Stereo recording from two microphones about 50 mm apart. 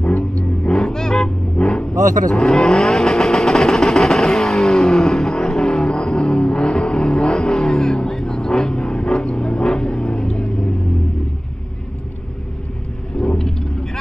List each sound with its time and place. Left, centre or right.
0.0 s roaring cats: left
0.7 s vehicle: centre
13.2 s vehicle: centre